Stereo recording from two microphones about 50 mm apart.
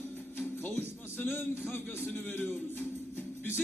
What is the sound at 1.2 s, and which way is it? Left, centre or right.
Music, left.